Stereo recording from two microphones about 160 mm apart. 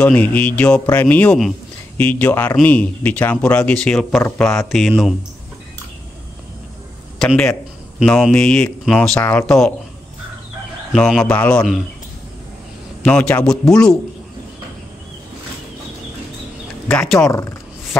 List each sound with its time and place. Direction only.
0.0 s speech: 10° left (ahead or behind)
7.2 s speech: 5° left (ahead or behind)
10.9 s speech: centre (ahead or behind)
13.0 s speech: 5° left (ahead or behind)
16.9 s speech: 5° left (ahead or behind)
17.3 s speech: 15° left (ahead or behind)